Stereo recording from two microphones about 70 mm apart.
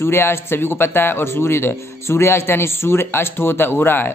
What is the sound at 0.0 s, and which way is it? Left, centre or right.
A man's voice, left.